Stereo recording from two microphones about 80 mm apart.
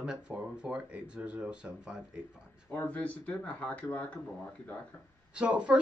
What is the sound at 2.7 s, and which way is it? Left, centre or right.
Speech, centre.